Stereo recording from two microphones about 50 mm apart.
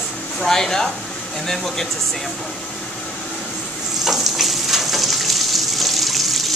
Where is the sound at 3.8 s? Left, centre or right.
Centre.